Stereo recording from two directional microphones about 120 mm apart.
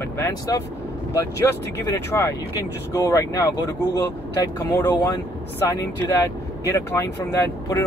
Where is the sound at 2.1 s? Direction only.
25° left (ahead or behind).